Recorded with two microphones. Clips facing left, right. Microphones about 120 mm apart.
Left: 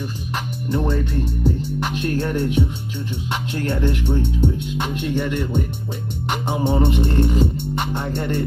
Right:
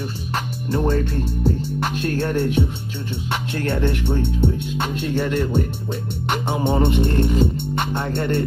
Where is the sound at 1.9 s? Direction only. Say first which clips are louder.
Even; 20° left (ahead or behind).